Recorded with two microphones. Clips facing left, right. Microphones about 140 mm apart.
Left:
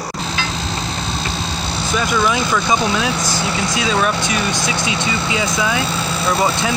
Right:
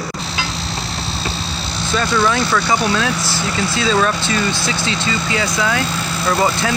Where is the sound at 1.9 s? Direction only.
15° left (ahead or behind).